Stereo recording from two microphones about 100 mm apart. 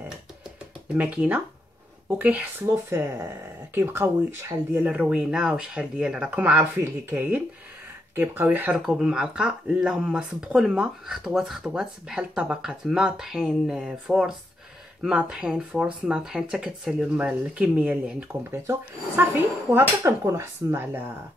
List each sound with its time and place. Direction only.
0.9 s speech: 15° right (ahead or behind)
2.6 s speech: 25° right (ahead or behind)
4.8 s speech: 10° right (ahead or behind)
8.7 s speech: 5° right (ahead or behind)
18.3 s speech: 30° right (ahead or behind)